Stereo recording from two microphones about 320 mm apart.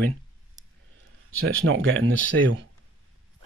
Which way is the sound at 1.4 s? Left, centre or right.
Right.